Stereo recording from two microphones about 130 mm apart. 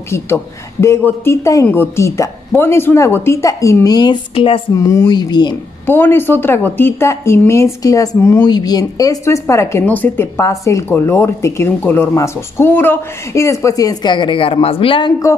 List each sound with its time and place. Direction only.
0.1 s a woman's voice: 20° left (ahead or behind); by 4.6 s 40° left (ahead or behind)
4.7 s speech: 25° left (ahead or behind)
5.9 s a woman's voice: 15° left (ahead or behind); by 15.1 s 40° left (ahead or behind)